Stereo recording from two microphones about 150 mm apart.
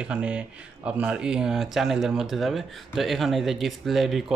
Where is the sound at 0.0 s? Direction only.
10° right (ahead or behind).